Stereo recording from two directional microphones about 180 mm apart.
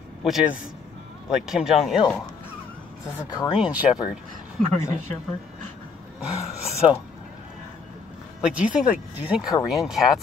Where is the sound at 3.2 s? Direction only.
20° left (ahead or behind).